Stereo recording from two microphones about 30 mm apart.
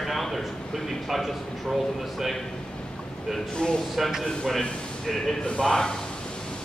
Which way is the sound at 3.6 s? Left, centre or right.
Left.